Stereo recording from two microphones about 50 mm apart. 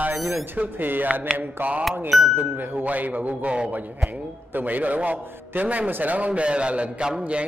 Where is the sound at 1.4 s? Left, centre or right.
Right.